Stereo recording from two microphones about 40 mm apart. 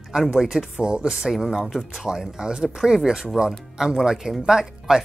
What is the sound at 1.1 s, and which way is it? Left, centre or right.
Speech, centre.